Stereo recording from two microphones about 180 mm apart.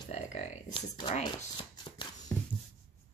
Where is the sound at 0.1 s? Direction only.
35° left (ahead or behind).